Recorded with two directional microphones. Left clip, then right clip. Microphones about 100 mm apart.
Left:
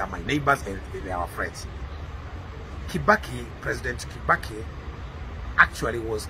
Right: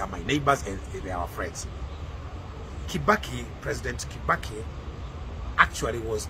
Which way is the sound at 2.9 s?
20° right (ahead or behind).